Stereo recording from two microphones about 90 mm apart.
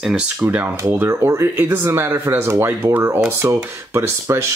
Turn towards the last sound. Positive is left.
turn(degrees=-30)  # may be behind; listen again after turning